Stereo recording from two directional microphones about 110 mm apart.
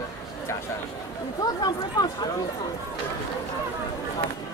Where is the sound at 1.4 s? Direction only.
40° left (ahead or behind).